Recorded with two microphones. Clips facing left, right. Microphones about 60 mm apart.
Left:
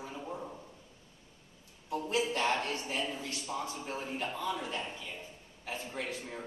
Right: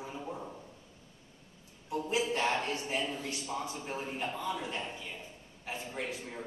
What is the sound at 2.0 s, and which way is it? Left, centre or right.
A man's voice, right.